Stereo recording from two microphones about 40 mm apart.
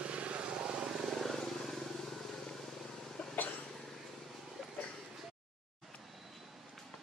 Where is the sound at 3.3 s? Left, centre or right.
Left.